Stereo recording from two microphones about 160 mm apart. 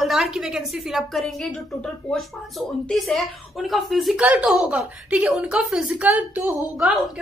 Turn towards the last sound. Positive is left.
turn(degrees=-10)  # may be behind; listen again after turning